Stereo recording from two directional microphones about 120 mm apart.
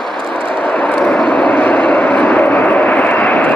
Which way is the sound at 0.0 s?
5° left (ahead or behind).